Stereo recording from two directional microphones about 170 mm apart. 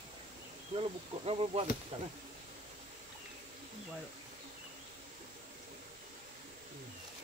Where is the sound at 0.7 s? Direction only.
35° right (ahead or behind).